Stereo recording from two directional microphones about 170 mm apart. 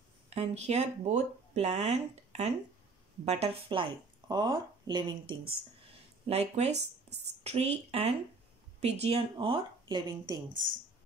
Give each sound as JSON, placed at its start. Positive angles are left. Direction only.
{"t": 0.3, "sound": "speech", "side_deg": -40}
{"t": 6.2, "sound": "speech", "side_deg": -40}